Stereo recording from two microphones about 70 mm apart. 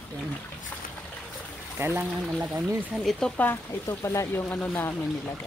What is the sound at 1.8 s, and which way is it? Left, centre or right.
Speech, right.